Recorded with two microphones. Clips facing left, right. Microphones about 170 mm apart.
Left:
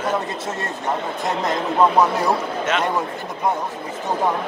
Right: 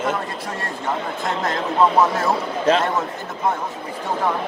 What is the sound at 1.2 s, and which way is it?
Speech, 20° left (ahead or behind).